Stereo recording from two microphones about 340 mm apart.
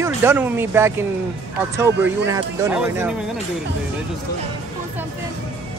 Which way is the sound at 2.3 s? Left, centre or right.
Centre.